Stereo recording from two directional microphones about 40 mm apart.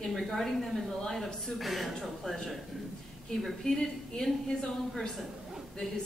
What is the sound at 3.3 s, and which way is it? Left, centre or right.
A woman's voice, centre.